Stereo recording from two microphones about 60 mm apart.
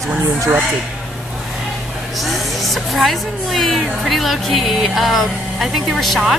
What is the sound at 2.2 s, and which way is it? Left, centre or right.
Speech, centre.